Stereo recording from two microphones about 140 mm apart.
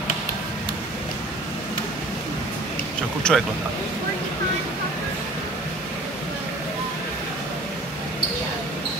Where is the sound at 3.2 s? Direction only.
5° left (ahead or behind).